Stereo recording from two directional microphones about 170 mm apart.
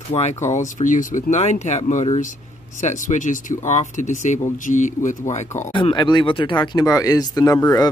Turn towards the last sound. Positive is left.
turn(degrees=20)  # may be behind; listen again after turning